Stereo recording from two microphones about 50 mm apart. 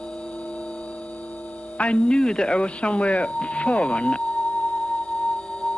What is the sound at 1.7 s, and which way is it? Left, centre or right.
Speech, left.